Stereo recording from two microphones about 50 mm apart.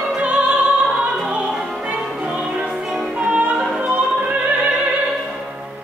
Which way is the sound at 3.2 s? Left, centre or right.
Right.